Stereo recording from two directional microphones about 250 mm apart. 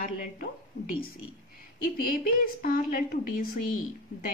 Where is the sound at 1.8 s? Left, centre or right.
Left.